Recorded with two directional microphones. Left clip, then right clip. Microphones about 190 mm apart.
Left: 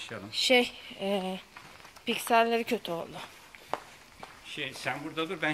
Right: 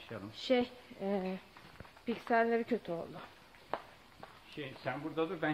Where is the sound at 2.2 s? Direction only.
Centre (ahead or behind).